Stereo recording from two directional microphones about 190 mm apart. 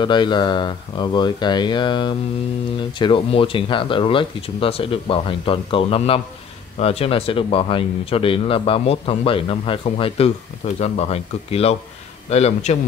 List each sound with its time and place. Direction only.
0.0 s speech: 25° left (ahead or behind)